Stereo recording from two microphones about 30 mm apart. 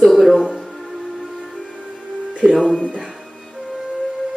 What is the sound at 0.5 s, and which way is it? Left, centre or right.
Music, centre.